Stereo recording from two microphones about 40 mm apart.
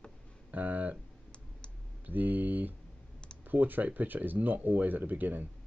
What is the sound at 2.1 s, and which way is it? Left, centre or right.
Speech, right.